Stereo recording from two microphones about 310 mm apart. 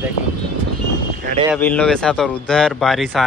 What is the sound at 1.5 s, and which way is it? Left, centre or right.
Speech, centre.